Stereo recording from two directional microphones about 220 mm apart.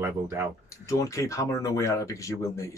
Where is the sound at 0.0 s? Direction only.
10° right (ahead or behind).